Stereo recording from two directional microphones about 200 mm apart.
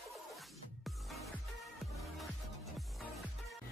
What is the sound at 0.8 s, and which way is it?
Music, centre (ahead or behind).